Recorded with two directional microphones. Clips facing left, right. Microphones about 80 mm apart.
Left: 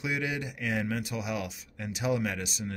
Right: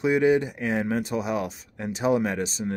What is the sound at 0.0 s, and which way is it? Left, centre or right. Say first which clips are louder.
Speech: right 12 dB; right.